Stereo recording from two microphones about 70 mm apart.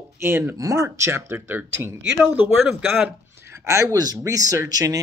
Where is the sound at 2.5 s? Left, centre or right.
Centre.